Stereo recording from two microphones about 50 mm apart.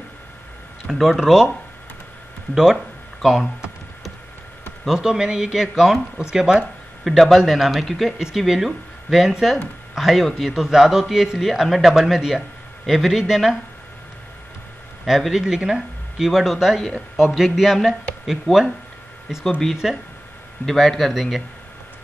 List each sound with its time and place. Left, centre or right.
0.8 s a man's voice: centre
2.5 s a man's voice: centre
4.8 s a man's voice: centre
7.1 s a man's voice: centre
7.8 s speech: centre
8.2 s a man's voice: centre
15.0 s a man's voice: centre
19.7 s a man's voice: centre